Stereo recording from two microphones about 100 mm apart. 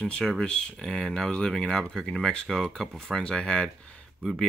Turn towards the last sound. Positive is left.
turn(degrees=0)  # may be behind; listen again after turning